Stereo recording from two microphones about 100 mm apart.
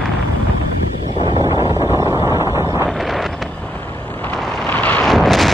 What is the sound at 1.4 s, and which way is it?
Wind noise, 40° right (ahead or behind).